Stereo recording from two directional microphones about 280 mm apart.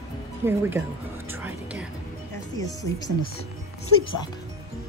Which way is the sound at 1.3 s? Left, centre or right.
Centre.